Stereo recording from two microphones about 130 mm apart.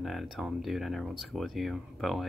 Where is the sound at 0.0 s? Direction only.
Centre (ahead or behind).